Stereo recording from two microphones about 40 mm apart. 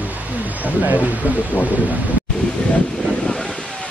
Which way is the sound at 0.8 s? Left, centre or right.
Right.